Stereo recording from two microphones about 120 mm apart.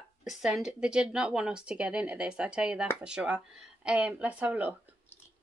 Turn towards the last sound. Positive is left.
turn(degrees=-10)  # may be behind; listen again after turning